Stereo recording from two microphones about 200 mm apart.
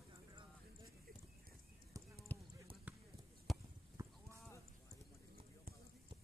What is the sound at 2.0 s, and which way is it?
Clip-clop, 15° right (ahead or behind).